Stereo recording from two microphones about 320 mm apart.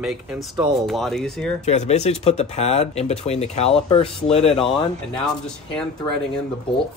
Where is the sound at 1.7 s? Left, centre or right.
Left.